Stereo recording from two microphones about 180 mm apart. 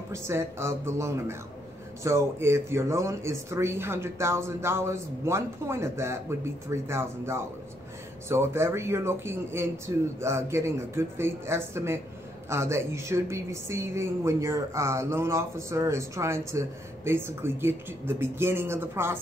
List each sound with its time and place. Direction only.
0.1 s speech: 15° right (ahead or behind)